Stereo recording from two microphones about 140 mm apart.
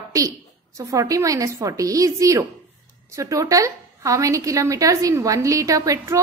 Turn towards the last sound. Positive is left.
turn(degrees=-25)  # may be behind; listen again after turning